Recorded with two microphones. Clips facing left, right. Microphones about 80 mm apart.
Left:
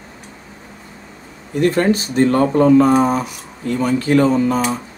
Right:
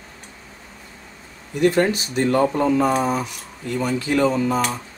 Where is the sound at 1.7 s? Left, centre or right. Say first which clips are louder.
Left 3 dB; left.